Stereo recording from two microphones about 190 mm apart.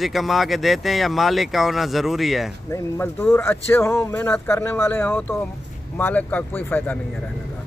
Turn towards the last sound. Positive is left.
turn(degrees=10)  # may be behind; listen again after turning